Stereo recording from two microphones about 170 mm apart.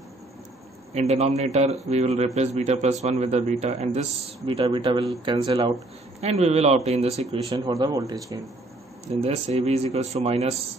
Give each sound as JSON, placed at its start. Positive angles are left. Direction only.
{"t": 0.9, "sound": "a man's voice", "side_deg": -40}
{"t": 7.4, "sound": "speech", "side_deg": -25}
{"t": 9.2, "sound": "a man's voice", "side_deg": -40}